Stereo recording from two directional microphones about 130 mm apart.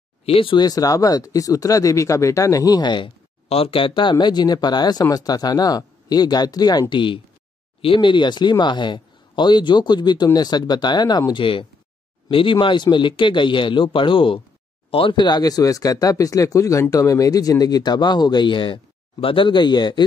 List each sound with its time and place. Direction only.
0.2 s speech: 45° left (ahead or behind)
0.6 s speech: 30° left (ahead or behind)
3.4 s speech: 50° left (ahead or behind)